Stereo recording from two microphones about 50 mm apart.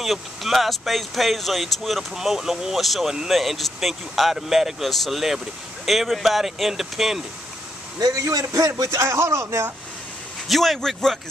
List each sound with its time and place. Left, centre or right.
0.0 s speech: centre
8.1 s a man's voice: right
10.5 s speech: centre